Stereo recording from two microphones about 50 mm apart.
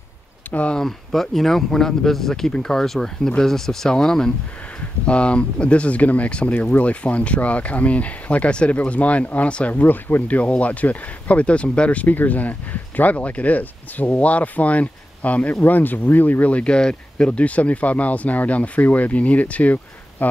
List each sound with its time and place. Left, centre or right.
0.5 s speech: left
0.7 s speech: centre; by 9.8 s left
9.8 s speech: left